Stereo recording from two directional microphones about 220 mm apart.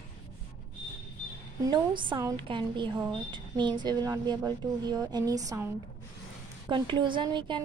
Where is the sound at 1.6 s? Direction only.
20° right (ahead or behind).